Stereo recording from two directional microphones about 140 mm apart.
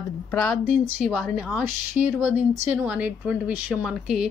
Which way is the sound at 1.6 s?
15° right (ahead or behind).